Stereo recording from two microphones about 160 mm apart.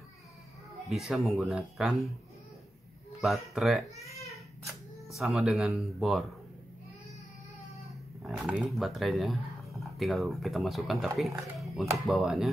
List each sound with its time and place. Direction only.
0.8 s a man's voice: centre (ahead or behind)
3.2 s a man's voice: centre (ahead or behind)
5.1 s a man's voice: centre (ahead or behind)
7.8 s a man's voice: 5° right (ahead or behind)